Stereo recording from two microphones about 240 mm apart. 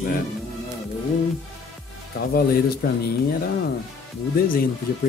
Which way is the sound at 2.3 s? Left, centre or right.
Left.